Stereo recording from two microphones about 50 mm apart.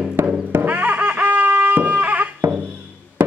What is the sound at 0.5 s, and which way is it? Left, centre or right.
Music, right.